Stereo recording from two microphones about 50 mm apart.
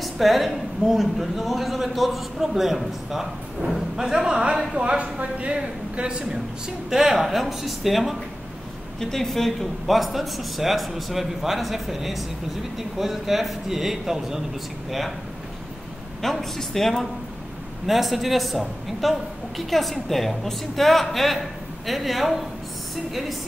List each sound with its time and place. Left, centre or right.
0.0 s a man's voice: centre
6.9 s a man's voice: centre
9.0 s a man's voice: centre
16.2 s a man's voice: centre